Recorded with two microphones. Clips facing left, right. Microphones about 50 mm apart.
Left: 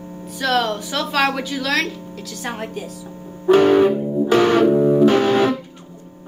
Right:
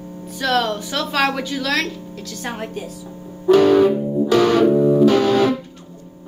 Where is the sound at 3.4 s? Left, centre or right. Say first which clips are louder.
Even; left.